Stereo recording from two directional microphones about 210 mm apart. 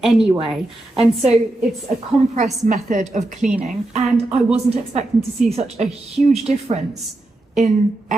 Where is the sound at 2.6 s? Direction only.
35° right (ahead or behind).